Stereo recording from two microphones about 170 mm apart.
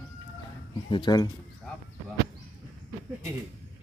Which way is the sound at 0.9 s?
25° left (ahead or behind).